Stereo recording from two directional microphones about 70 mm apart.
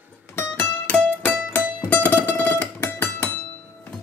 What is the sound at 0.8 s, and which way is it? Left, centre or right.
Music, centre.